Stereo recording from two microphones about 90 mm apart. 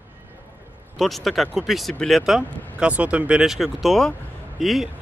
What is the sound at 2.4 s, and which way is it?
Speech, 20° left (ahead or behind).